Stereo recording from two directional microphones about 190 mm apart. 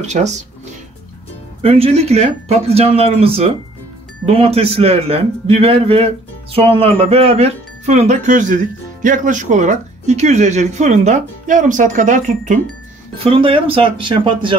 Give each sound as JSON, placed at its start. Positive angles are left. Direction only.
{"t": 0.0, "sound": "a man's voice", "side_deg": -35}
{"t": 1.6, "sound": "a man's voice", "side_deg": -30}
{"t": 13.2, "sound": "speech", "side_deg": -30}